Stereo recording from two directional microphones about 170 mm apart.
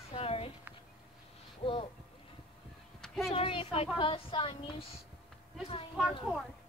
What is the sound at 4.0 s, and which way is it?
Speech, 30° left (ahead or behind).